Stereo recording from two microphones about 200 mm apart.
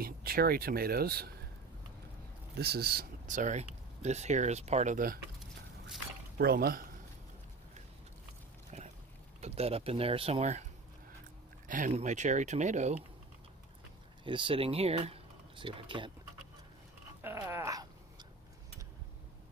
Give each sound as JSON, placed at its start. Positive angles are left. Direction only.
{"t": 0.0, "sound": "speech", "side_deg": -50}
{"t": 2.6, "sound": "speech", "side_deg": -50}
{"t": 6.3, "sound": "speech", "side_deg": -50}
{"t": 8.7, "sound": "a sound", "side_deg": -35}
{"t": 9.4, "sound": "speech", "side_deg": -30}
{"t": 14.2, "sound": "speech", "side_deg": -25}
{"t": 17.2, "sound": "a sound", "side_deg": -10}